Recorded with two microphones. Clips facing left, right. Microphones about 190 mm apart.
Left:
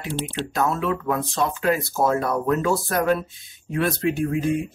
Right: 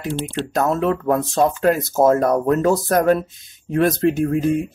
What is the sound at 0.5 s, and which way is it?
Speech, 45° right (ahead or behind).